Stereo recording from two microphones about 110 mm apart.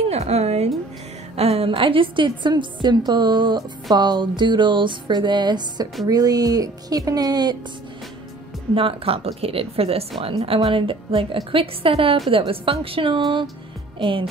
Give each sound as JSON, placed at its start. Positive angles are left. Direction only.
{"t": 0.1, "sound": "speech", "side_deg": -75}
{"t": 1.3, "sound": "music", "side_deg": -65}
{"t": 6.0, "sound": "speech", "side_deg": -35}
{"t": 8.7, "sound": "a woman's voice", "side_deg": -60}
{"t": 13.9, "sound": "music", "side_deg": -50}